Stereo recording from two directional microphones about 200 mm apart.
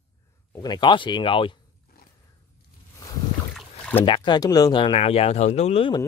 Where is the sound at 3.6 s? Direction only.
5° left (ahead or behind).